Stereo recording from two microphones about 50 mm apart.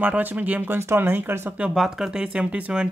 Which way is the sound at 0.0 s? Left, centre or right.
Right.